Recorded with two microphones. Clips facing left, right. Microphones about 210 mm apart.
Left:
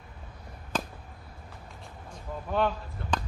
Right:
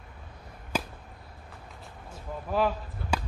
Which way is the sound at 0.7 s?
10° right (ahead or behind).